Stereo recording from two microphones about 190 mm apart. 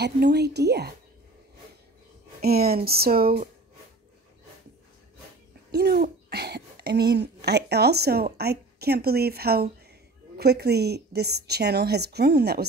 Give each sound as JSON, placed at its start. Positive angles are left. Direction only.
{"t": 0.0, "sound": "speech", "side_deg": -60}
{"t": 2.4, "sound": "speech", "side_deg": -55}
{"t": 5.7, "sound": "speech", "side_deg": -55}